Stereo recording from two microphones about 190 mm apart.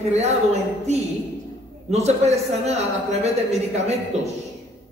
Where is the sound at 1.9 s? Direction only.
35° right (ahead or behind).